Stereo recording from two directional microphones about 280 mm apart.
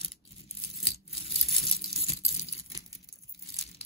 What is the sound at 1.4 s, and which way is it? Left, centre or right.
Tearing, left.